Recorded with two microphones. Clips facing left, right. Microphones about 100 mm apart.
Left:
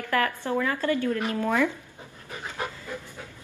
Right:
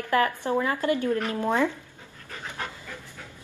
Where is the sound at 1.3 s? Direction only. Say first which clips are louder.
Left 1 dB; 25° right (ahead or behind).